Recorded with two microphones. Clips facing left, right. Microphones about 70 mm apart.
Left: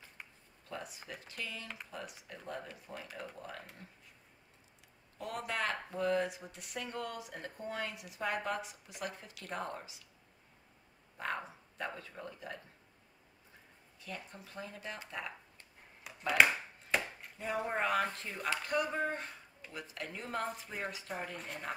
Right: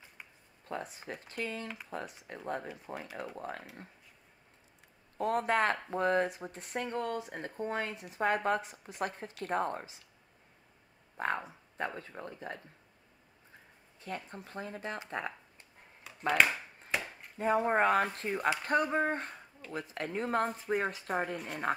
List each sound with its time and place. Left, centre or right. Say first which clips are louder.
0.7 s speech: right 5 dB; right
5.1 s speech: right 9 dB; right
11.1 s speech: right 5 dB; right
13.9 s speech: right 5 dB; right
16.3 s chop: even; centre
17.4 s speech: right 7 dB; right